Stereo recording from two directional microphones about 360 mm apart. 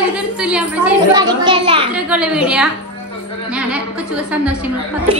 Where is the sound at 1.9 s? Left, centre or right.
Centre.